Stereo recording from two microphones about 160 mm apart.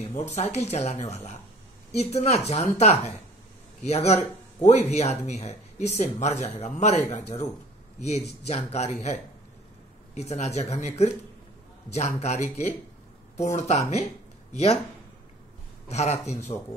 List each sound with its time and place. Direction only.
0.1 s speech: 45° left (ahead or behind)
3.8 s speech: 40° left (ahead or behind)
15.9 s speech: 45° left (ahead or behind)